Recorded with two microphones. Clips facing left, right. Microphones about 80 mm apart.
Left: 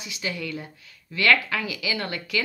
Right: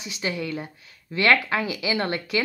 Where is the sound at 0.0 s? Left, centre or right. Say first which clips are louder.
Right 3 dB; right.